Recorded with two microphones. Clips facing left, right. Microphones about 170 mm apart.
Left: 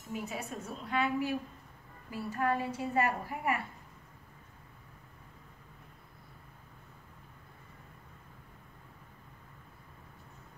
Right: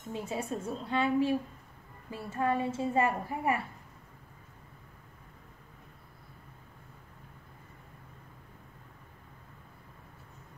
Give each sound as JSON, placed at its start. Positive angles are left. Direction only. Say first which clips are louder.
{"t": 0.1, "sound": "a woman's voice", "louder": "right 4 dB", "side_deg": -30}